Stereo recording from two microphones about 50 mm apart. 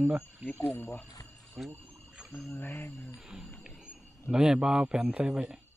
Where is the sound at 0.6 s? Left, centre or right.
Left.